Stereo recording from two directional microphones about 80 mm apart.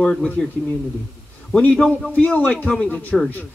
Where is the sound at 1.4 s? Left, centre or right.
Centre.